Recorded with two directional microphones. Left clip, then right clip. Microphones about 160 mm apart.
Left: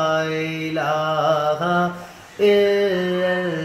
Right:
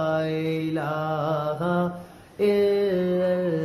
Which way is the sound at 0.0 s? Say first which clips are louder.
Left 4 dB; 5° right (ahead or behind).